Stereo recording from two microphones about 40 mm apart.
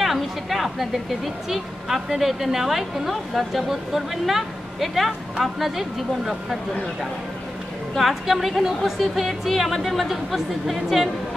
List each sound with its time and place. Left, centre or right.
0.0 s chatter: centre
1.5 s a woman's voice: centre
8.0 s a woman's voice: centre